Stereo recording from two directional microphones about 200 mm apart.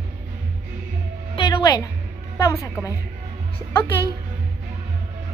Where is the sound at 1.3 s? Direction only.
20° left (ahead or behind).